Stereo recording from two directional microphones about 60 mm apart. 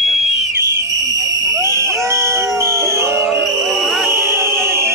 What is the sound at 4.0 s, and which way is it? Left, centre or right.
Music, right.